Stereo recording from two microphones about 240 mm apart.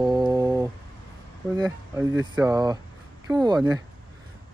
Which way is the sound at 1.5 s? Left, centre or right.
Centre.